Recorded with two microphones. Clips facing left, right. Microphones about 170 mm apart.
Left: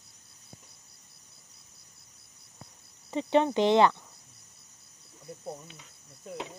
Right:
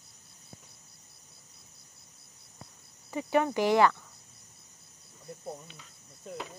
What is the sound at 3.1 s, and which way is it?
Speech, 25° left (ahead or behind).